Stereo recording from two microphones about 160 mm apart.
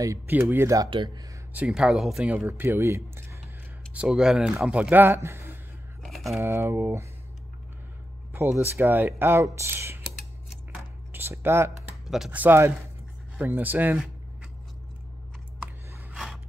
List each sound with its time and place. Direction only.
0.0 s speech: 20° right (ahead or behind)
0.8 s speech: 30° right (ahead or behind)
1.5 s speech: 5° right (ahead or behind)
3.9 s speech: 5° right (ahead or behind)
6.0 s typing: centre (ahead or behind)
6.4 s speech: 15° right (ahead or behind)
8.3 s speech: 15° right (ahead or behind)
11.1 s speech: 15° right (ahead or behind)
16.1 s gasp: centre (ahead or behind)